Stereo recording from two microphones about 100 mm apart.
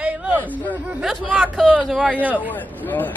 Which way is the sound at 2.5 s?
20° left (ahead or behind).